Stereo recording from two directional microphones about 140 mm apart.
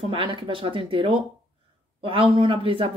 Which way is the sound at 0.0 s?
40° right (ahead or behind).